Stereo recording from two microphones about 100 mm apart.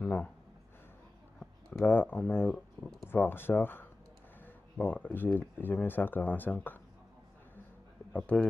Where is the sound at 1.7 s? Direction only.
20° left (ahead or behind).